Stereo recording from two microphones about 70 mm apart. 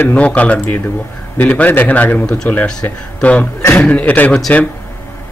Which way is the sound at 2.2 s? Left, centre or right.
Centre.